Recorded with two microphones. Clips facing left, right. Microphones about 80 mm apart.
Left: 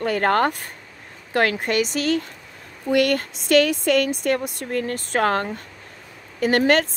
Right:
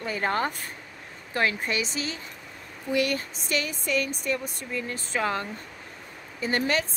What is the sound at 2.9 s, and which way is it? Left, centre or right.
Speech, left.